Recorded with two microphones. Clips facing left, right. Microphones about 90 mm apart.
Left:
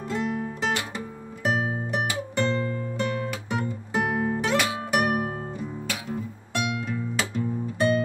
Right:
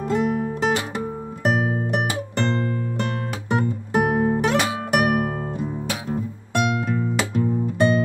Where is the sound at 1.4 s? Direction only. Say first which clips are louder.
Right 4 dB; 55° right (ahead or behind).